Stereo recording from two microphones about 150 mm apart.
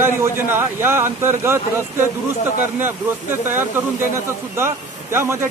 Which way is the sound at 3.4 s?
15° right (ahead or behind).